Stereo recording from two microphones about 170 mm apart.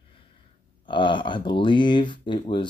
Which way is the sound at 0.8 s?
30° left (ahead or behind).